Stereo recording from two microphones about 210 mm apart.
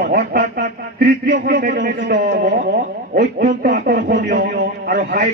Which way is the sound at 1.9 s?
60° right (ahead or behind).